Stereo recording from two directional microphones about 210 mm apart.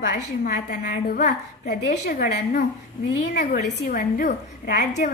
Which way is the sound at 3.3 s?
55° left (ahead or behind).